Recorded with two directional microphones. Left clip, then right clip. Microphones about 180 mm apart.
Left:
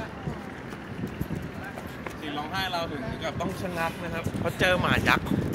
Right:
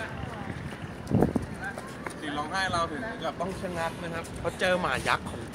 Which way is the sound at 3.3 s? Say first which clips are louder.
Left 2 dB; centre (ahead or behind).